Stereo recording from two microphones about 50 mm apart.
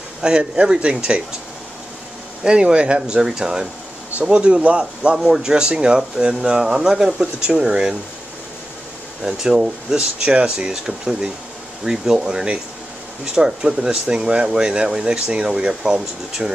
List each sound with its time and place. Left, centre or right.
0.2 s speech: centre
2.4 s speech: centre
5.1 s speech: centre
9.2 s speech: centre